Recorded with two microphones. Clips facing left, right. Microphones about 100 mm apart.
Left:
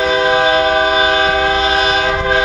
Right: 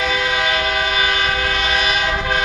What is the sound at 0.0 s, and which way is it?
Train, 35° left (ahead or behind).